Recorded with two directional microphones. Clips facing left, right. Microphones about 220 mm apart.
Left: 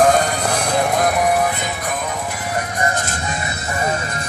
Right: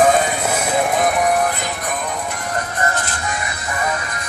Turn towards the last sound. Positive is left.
turn(degrees=30)  # may be behind; listen again after turning